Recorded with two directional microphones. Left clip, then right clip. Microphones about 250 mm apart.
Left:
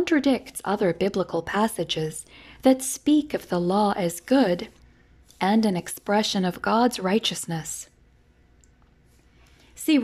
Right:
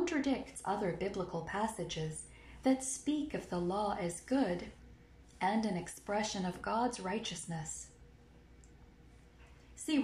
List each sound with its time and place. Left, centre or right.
0.0 s speech: left